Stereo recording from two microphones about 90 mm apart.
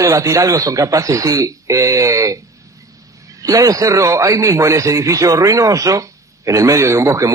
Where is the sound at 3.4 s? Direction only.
40° right (ahead or behind).